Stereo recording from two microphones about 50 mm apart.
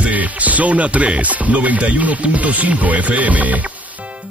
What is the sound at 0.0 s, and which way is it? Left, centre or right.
Music, right.